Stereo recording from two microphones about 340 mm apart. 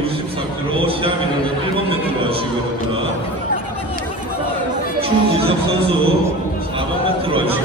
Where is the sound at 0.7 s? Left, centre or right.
Centre.